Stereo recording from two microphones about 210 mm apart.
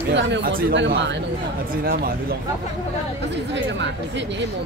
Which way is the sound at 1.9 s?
45° right (ahead or behind).